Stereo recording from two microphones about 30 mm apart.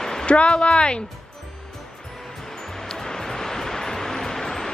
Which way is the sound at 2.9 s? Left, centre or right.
Centre.